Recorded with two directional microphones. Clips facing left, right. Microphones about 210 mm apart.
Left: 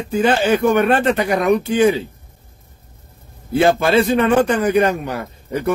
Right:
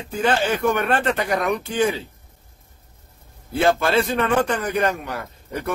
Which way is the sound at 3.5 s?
10° left (ahead or behind).